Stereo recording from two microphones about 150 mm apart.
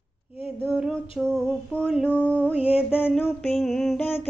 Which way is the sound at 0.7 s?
5° right (ahead or behind).